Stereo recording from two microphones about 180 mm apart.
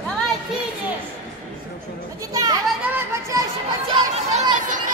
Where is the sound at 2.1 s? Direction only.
20° right (ahead or behind).